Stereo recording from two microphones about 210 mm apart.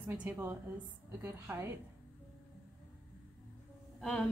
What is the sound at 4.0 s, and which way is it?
Speech, 5° left (ahead or behind).